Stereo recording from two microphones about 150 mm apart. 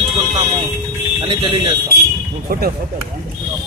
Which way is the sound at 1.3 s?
35° right (ahead or behind).